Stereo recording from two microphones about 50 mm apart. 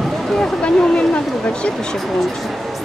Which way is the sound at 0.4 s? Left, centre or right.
Left.